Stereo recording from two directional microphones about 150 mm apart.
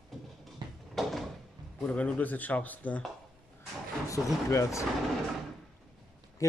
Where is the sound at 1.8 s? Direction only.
10° left (ahead or behind).